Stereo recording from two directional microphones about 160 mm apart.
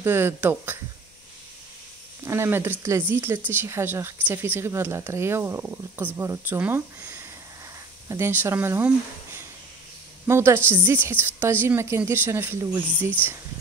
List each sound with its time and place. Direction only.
0.0 s speech: 15° right (ahead or behind)
2.2 s speech: 15° right (ahead or behind)